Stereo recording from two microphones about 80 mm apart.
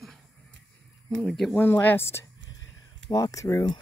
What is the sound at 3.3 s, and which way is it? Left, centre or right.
Speech, left.